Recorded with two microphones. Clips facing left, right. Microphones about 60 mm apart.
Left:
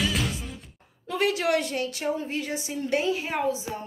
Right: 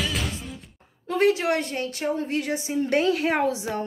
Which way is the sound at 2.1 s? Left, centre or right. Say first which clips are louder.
Right 4 dB; right.